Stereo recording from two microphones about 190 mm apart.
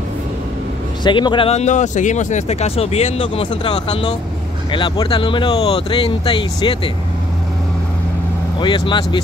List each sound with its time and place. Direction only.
1.0 s speech: 25° left (ahead or behind)
8.5 s speech: 25° left (ahead or behind)